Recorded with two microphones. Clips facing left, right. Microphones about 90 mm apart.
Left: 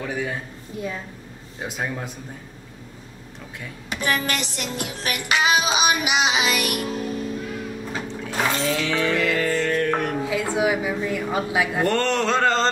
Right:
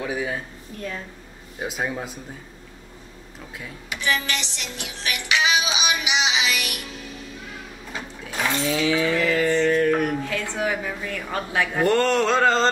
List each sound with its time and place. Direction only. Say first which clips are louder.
0.0 s speech: right 1 dB; 5° right (ahead or behind)
0.7 s a woman's voice: left 2 dB; 10° left (ahead or behind)
1.6 s a sound: right 1 dB; 5° right (ahead or behind)
3.9 s music: left 1 dB; 45° left (ahead or behind)
8.2 s mantra: left 1 dB; 5° right (ahead or behind)
10.5 s a woman's voice: left 6 dB; 10° left (ahead or behind)
11.9 s a sound: right 2 dB; 5° right (ahead or behind)